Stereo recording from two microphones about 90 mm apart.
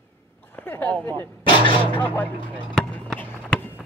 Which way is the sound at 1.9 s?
20° left (ahead or behind).